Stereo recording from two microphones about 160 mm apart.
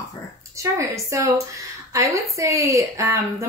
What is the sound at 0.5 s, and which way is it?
Speech, 20° right (ahead or behind).